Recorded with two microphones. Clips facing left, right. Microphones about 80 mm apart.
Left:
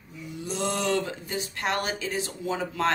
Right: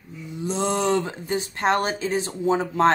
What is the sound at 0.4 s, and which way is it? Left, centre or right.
Speech, right.